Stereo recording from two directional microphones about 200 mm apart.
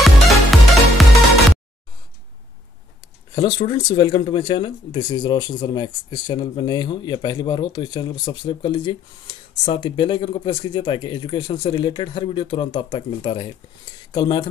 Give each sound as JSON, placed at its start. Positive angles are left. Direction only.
{"t": 0.0, "sound": "music", "side_deg": 0}
{"t": 3.3, "sound": "speech", "side_deg": 20}